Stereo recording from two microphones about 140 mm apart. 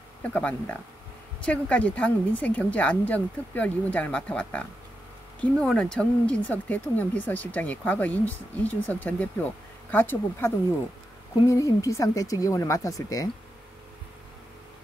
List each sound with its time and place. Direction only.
0.2 s speech: 10° left (ahead or behind)